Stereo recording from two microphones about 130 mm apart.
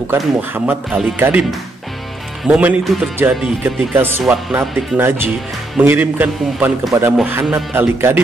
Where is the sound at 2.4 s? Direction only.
10° right (ahead or behind).